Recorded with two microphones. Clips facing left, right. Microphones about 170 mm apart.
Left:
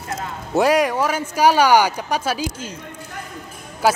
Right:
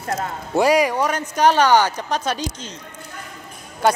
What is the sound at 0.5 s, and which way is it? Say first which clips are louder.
Speech: even; centre (ahead or behind).